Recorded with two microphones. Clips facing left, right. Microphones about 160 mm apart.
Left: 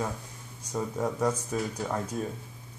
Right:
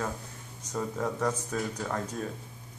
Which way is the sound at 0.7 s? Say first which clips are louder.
Left 2 dB; 10° left (ahead or behind).